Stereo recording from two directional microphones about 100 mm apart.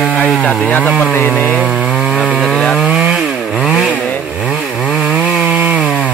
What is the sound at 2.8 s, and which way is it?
Chainsaw, 5° right (ahead or behind).